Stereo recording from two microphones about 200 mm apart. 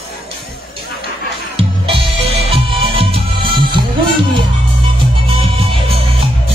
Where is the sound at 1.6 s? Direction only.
25° right (ahead or behind).